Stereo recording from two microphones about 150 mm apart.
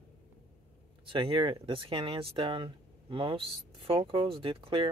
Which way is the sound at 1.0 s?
35° right (ahead or behind).